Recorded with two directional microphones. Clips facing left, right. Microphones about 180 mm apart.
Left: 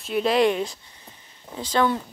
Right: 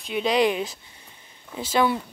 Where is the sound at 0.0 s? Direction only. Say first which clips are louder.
Left 2 dB; centre (ahead or behind).